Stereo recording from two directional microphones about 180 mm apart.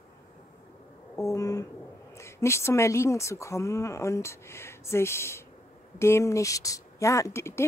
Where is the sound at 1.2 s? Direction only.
20° left (ahead or behind).